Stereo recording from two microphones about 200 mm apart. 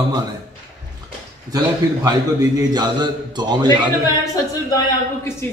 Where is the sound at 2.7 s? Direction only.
20° right (ahead or behind).